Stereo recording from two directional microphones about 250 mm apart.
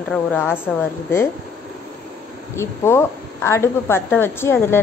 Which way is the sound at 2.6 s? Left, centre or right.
Centre.